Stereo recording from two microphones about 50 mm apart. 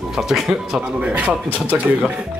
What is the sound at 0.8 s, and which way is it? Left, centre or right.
Speech, right.